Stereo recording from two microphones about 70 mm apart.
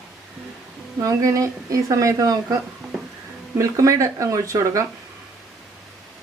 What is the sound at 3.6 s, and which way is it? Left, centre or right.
Speech, right.